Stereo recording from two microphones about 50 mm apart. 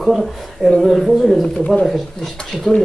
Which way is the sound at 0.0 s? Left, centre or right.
Centre.